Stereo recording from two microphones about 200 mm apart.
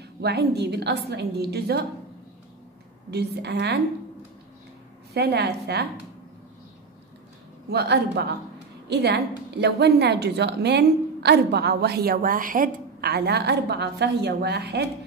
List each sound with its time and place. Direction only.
0.0 s a woman's voice: 55° right (ahead or behind)
3.1 s a woman's voice: 55° right (ahead or behind)
5.1 s a woman's voice: 55° right (ahead or behind)
7.7 s a woman's voice: 55° right (ahead or behind)